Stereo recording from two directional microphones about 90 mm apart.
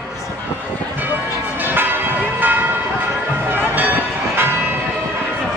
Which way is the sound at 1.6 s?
20° right (ahead or behind).